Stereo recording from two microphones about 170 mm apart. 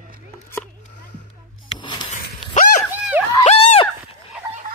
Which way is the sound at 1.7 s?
25° left (ahead or behind).